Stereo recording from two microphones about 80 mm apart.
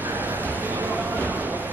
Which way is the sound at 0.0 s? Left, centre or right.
Right.